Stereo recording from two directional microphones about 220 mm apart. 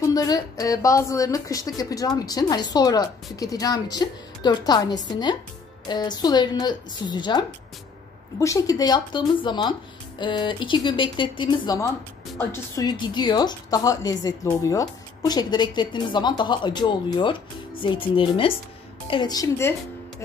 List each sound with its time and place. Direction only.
0.1 s a woman's voice: 15° left (ahead or behind)